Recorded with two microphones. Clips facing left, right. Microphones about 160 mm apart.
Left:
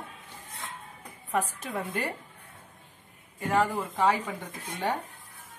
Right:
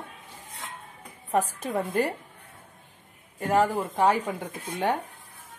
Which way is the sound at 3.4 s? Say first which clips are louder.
Right 3 dB; 45° right (ahead or behind).